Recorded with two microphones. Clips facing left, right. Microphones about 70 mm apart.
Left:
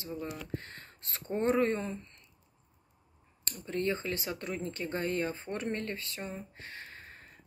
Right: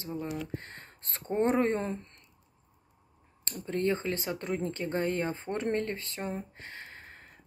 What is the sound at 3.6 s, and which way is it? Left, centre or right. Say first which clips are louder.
Speech: right 3 dB; right.